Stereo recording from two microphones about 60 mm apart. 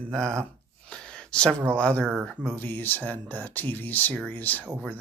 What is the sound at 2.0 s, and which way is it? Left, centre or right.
Speech, right.